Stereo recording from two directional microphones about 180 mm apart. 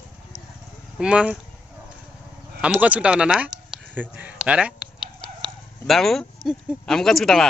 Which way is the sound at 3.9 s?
5° right (ahead or behind).